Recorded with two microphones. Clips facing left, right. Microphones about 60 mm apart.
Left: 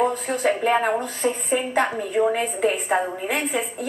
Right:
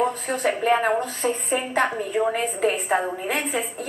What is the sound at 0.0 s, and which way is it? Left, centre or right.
A woman's voice, centre.